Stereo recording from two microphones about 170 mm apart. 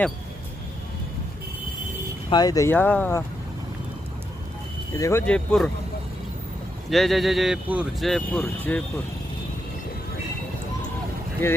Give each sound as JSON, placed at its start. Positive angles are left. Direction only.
{"t": 2.2, "sound": "speech", "side_deg": 25}
{"t": 4.9, "sound": "speech", "side_deg": 20}
{"t": 5.2, "sound": "speech", "side_deg": 5}
{"t": 6.9, "sound": "speech", "side_deg": 0}
{"t": 8.1, "sound": "speech", "side_deg": 10}
{"t": 11.4, "sound": "speech", "side_deg": 15}